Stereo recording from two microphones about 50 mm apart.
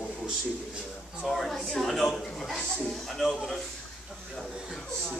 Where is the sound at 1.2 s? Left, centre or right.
Centre.